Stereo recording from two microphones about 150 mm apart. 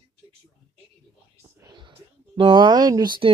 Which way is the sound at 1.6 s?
30° right (ahead or behind).